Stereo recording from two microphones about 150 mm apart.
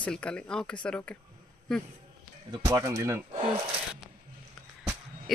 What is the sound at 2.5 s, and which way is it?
Speech, 25° right (ahead or behind).